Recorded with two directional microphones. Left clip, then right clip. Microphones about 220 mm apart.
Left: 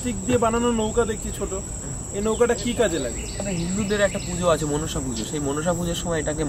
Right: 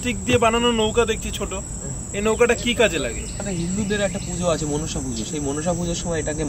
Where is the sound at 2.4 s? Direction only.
20° left (ahead or behind).